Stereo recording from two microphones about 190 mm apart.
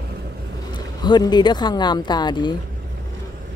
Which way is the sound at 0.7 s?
25° left (ahead or behind).